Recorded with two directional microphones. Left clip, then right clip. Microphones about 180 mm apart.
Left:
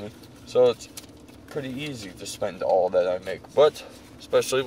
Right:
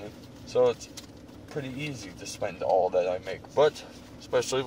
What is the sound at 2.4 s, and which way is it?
Speech, 25° left (ahead or behind).